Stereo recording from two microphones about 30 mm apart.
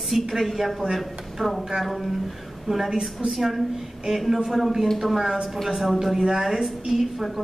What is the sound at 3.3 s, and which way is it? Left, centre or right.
A woman's voice, centre.